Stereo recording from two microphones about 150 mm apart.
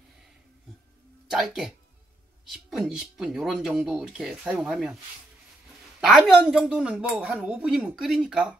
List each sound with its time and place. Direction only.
1.2 s speech: centre (ahead or behind)
5.9 s speech: centre (ahead or behind)